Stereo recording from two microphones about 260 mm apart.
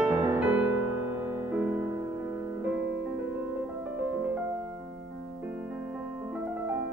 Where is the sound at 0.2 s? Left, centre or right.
Centre.